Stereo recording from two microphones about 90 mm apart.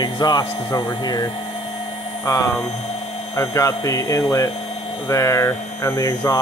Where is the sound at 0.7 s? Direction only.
35° left (ahead or behind).